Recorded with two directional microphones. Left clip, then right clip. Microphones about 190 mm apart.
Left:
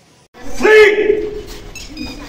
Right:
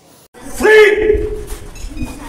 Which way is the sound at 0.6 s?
Centre (ahead or behind).